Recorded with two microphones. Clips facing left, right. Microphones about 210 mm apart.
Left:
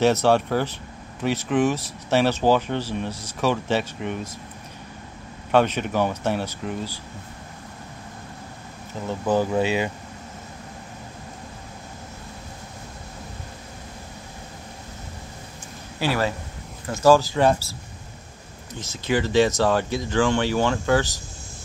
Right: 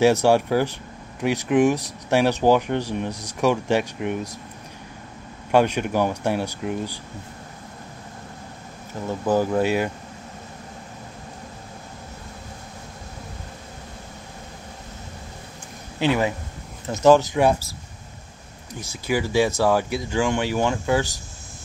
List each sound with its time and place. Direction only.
0.0 s speech: 15° right (ahead or behind)
5.5 s speech: 10° right (ahead or behind)
9.2 s speech: 10° right (ahead or behind)
16.0 s speech: 20° right (ahead or behind)
18.8 s speech: 10° right (ahead or behind)